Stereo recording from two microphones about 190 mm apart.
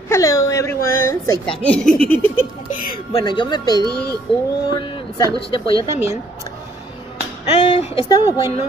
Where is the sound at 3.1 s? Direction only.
25° left (ahead or behind).